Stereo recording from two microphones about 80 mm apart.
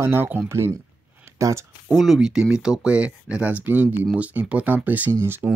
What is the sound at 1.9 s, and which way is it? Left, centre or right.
Speech, centre.